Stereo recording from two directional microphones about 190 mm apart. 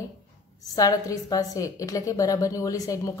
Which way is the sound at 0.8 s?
20° left (ahead or behind).